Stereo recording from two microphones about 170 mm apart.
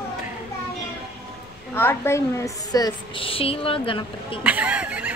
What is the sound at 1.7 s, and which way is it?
A woman's voice, 15° left (ahead or behind).